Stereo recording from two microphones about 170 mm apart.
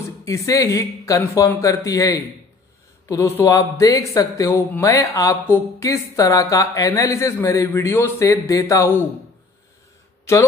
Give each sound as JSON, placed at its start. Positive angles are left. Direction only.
{"t": 0.2, "sound": "speech", "side_deg": 20}